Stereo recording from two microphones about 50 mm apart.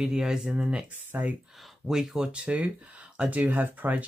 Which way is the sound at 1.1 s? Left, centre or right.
Right.